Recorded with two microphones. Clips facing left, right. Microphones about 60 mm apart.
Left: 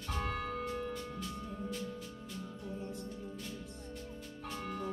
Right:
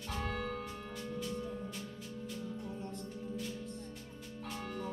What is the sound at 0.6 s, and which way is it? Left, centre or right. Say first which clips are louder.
Music: left 6 dB; centre.